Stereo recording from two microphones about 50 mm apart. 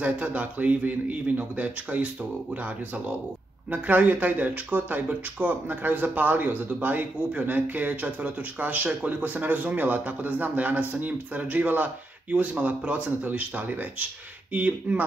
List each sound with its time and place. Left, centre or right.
0.0 s speech: right
3.7 s speech: right